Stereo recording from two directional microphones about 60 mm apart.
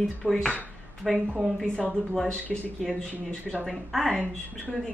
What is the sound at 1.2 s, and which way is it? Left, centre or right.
Speech, right.